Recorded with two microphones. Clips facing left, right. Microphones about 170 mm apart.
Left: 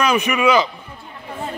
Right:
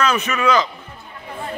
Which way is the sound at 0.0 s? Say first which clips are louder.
Left 2 dB; 15° left (ahead or behind).